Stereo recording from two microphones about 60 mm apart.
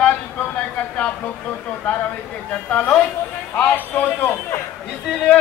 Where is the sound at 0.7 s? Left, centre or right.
Left.